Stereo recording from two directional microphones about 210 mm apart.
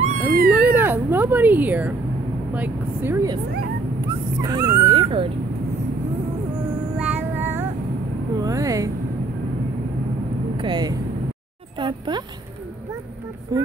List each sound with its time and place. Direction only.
0.0 s cat: 40° right (ahead or behind)
0.6 s speech: 10° right (ahead or behind)
4.4 s dog: 15° right (ahead or behind)
7.0 s music: 10° right (ahead or behind)
8.4 s speech: 15° right (ahead or behind)
10.6 s speech: 20° right (ahead or behind)